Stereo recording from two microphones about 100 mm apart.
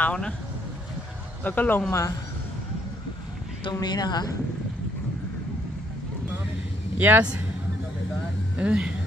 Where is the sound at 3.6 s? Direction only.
45° left (ahead or behind).